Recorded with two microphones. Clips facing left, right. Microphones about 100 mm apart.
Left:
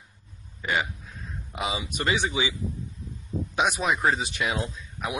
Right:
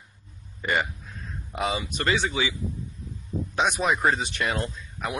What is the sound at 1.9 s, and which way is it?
Speech, 15° left (ahead or behind).